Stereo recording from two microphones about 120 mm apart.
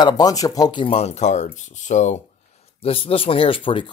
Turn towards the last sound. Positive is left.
turn(degrees=45)  # may be behind; listen again after turning